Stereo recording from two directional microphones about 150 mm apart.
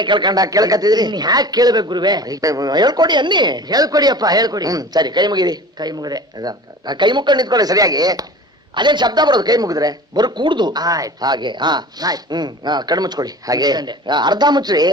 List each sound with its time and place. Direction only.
0.0 s speech: 30° right (ahead or behind)